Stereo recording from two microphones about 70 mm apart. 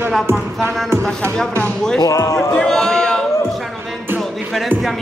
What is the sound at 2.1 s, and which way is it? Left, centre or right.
Speech, left.